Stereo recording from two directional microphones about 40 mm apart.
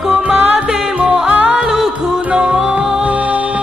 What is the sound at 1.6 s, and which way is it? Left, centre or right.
Music, centre.